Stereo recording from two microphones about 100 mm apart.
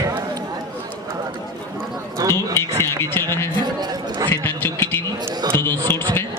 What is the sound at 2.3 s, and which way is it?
A man's voice, 25° left (ahead or behind).